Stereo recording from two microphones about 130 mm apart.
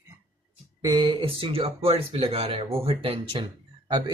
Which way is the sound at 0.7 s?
35° right (ahead or behind).